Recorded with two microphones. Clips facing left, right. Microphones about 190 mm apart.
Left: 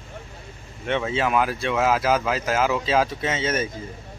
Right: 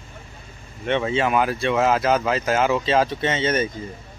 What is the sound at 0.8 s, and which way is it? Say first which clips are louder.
A man's voice: right 2 dB; centre (ahead or behind).